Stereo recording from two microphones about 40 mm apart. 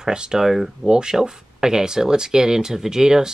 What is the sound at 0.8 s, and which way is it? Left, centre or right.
Speech, right.